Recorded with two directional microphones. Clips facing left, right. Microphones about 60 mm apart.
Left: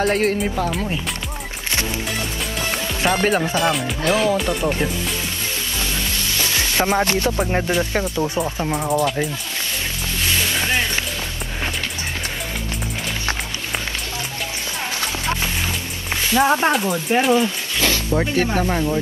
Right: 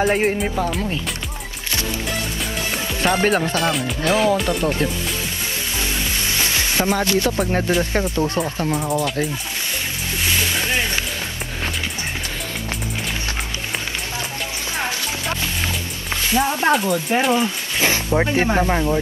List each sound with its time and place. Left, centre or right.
0.0 s speech: centre
0.4 s speech: centre
3.0 s speech: centre
6.8 s music: left
7.3 s speech: centre
16.3 s speech: left
16.7 s speech: centre
17.7 s speech: right